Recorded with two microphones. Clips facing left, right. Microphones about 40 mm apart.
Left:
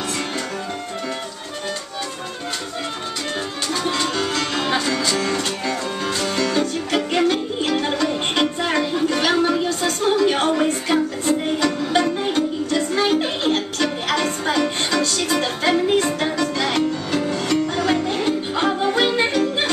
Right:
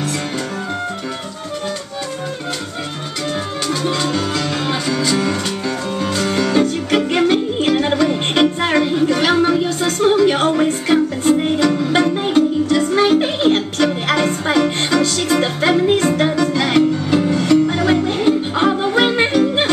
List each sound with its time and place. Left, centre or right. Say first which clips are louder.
3.6 s music: right 3 dB; centre
6.2 s music: right 5 dB; centre
11.9 s music: right 4 dB; centre
18.9 s yodeling: right 5 dB; right